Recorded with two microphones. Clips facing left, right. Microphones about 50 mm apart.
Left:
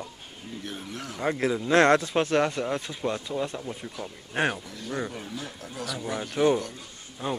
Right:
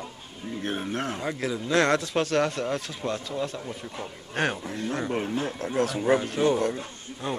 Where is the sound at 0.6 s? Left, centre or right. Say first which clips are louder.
Right 9 dB; right.